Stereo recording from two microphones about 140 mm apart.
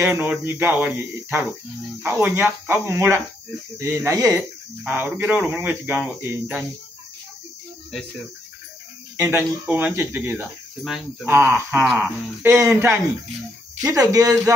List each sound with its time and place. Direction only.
0.0 s speech: 15° right (ahead or behind)
9.1 s speech: 15° right (ahead or behind)
10.8 s speech: centre (ahead or behind)
11.2 s speech: 20° right (ahead or behind)